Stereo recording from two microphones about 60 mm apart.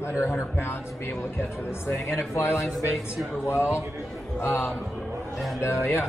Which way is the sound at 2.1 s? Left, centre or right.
Left.